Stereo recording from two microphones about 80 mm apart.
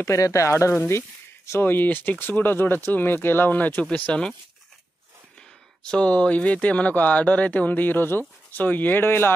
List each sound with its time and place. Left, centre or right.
0.0 s speech: left; by 4.3 s centre
5.9 s speech: centre